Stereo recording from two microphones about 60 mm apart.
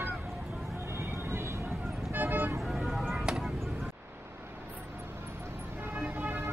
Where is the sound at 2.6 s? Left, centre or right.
Centre.